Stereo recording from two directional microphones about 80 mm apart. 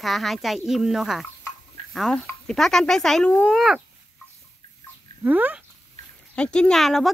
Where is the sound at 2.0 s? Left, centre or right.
Centre.